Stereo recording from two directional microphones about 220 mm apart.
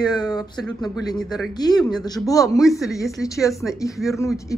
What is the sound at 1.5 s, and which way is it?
Speech, 20° left (ahead or behind).